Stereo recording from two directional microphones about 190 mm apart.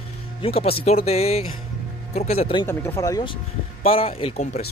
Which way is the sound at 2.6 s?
10° left (ahead or behind).